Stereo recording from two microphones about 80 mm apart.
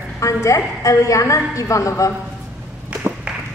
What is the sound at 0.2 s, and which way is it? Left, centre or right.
A woman's voice, left.